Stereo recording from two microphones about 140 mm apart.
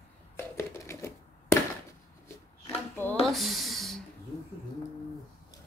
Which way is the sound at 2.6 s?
15° left (ahead or behind).